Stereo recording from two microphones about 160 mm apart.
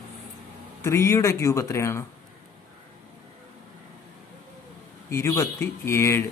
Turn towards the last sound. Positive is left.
turn(degrees=15)  # may be behind; listen again after turning